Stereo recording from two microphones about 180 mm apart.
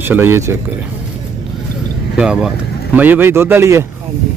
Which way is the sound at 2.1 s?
5° right (ahead or behind).